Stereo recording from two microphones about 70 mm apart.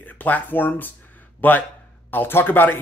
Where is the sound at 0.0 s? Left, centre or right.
Left.